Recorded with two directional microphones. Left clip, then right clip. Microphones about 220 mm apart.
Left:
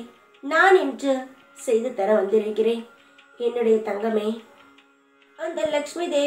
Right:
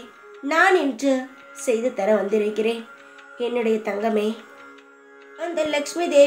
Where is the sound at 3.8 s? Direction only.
50° right (ahead or behind).